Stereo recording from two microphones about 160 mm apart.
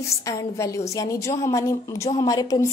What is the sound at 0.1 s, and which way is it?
A woman's voice, 20° left (ahead or behind).